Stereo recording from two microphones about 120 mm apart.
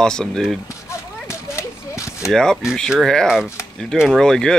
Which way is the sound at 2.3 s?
5° left (ahead or behind).